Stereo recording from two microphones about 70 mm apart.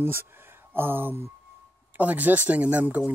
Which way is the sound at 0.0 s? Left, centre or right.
Right.